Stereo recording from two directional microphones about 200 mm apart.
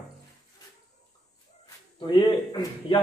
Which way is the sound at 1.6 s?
25° left (ahead or behind).